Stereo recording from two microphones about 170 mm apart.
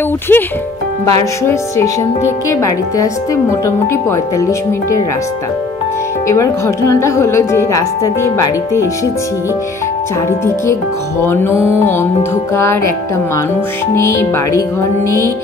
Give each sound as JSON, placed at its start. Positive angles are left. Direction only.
{"t": 0.3, "sound": "a woman's voice", "side_deg": 10}
{"t": 6.2, "sound": "a woman's voice", "side_deg": 15}
{"t": 11.2, "sound": "a woman's voice", "side_deg": 15}
{"t": 13.9, "sound": "a woman's voice", "side_deg": 15}